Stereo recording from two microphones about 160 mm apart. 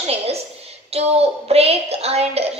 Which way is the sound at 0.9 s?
40° right (ahead or behind).